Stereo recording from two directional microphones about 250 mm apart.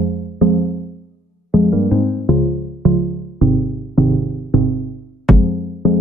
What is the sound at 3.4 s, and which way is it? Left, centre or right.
Music, centre.